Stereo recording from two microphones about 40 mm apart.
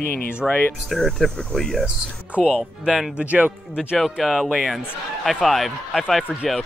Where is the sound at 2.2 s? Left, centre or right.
Right.